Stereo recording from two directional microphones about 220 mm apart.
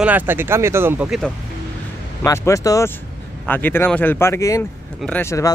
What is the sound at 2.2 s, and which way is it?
Speech, 15° left (ahead or behind).